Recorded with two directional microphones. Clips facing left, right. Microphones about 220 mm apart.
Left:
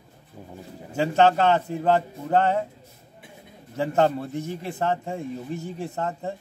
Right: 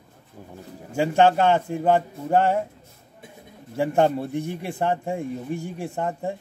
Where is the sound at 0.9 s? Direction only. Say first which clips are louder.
Right 1 dB; 10° right (ahead or behind).